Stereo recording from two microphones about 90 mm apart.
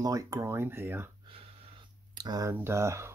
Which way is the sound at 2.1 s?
45° right (ahead or behind).